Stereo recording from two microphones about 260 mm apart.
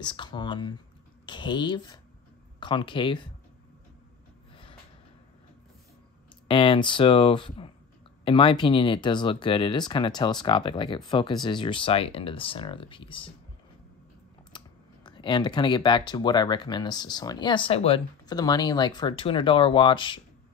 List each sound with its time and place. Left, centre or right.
0.0 s speech: centre
6.4 s speech: centre
14.5 s computer keyboard: centre
15.0 s speech: centre